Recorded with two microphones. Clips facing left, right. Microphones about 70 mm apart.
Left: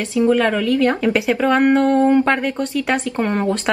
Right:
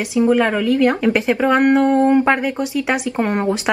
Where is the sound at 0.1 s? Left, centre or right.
Centre.